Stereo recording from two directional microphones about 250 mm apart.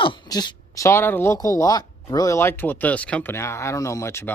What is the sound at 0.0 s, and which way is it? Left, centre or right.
Speech, centre.